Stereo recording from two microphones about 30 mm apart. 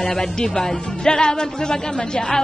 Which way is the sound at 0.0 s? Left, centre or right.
Left.